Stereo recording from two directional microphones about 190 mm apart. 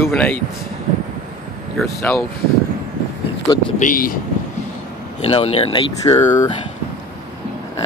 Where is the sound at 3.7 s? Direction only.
45° left (ahead or behind).